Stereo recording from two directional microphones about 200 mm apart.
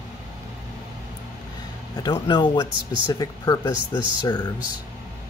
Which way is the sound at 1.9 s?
20° left (ahead or behind).